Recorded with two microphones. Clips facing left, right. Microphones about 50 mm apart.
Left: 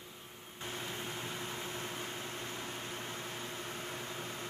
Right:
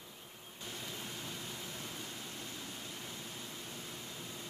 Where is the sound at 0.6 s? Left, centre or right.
Left.